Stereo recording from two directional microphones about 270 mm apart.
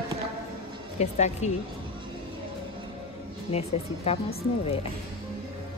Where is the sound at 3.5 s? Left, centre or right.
Left.